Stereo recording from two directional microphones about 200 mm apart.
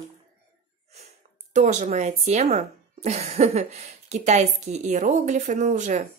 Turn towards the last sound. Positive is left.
turn(degrees=-40)  # may be behind; listen again after turning